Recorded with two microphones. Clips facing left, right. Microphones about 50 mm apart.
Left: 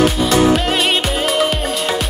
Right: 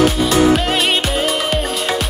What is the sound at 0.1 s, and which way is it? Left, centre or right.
Music, centre.